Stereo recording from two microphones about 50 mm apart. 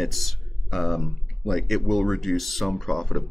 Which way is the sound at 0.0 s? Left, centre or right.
Centre.